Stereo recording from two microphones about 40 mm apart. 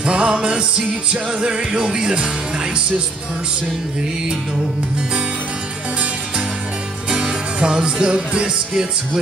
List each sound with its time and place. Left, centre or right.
0.0 s music: right
7.2 s music: right